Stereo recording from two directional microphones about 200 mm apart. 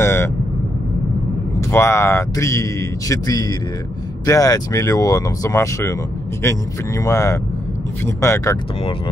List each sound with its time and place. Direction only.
0.0 s vehicle: 10° left (ahead or behind)
1.6 s speech: 15° left (ahead or behind)